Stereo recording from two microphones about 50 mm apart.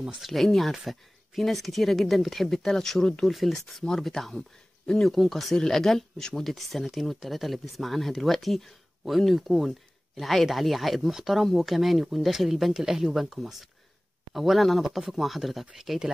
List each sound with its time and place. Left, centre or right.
0.1 s speech: centre
3.3 s speech: centre
4.8 s speech: centre
5.1 s speech: centre